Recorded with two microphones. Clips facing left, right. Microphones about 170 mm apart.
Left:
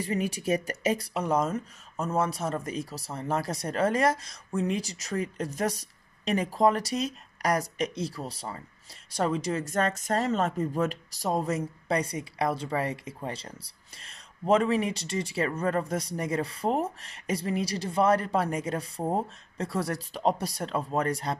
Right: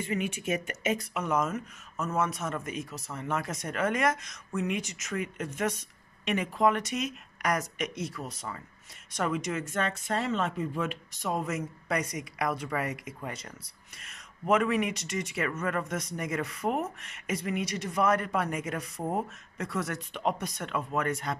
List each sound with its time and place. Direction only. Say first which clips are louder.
0.0 s speech: left 2 dB; 35° left (ahead or behind)